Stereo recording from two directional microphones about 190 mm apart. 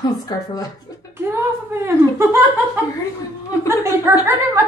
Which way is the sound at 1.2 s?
10° right (ahead or behind).